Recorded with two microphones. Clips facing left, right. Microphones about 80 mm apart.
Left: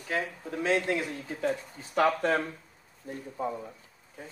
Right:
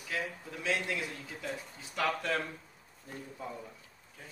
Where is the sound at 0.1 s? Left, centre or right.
Left.